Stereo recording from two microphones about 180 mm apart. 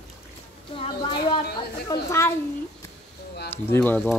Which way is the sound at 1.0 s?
25° left (ahead or behind).